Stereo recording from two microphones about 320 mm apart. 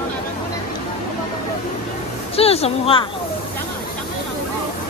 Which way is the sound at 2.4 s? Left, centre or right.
Centre.